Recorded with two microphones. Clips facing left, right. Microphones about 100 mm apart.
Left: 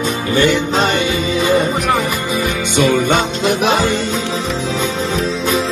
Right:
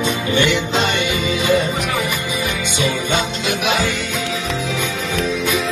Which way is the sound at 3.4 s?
45° left (ahead or behind).